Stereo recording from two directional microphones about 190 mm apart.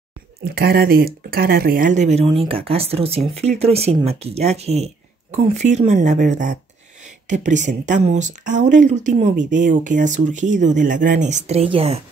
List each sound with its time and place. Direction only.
0.6 s speech: 55° right (ahead or behind); by 12.0 s 30° right (ahead or behind)